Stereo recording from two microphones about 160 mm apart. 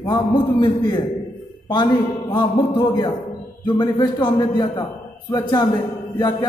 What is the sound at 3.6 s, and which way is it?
A man's voice, 30° left (ahead or behind).